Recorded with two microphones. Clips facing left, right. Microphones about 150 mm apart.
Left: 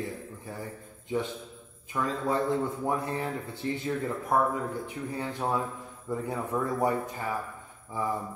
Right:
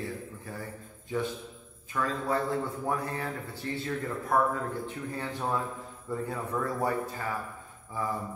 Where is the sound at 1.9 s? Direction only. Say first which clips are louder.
Left 1 dB; 20° left (ahead or behind).